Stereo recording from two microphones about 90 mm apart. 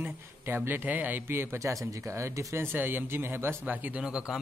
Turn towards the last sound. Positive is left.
turn(degrees=-10)  # may be behind; listen again after turning